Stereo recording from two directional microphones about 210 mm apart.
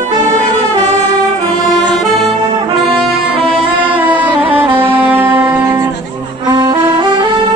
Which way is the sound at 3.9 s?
25° right (ahead or behind).